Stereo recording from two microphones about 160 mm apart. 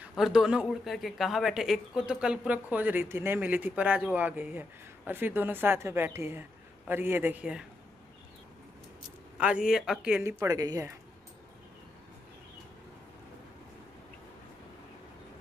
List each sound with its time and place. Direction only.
0.1 s a woman's voice: centre (ahead or behind)
9.4 s speech: 5° right (ahead or behind)
10.2 s speech: 20° right (ahead or behind)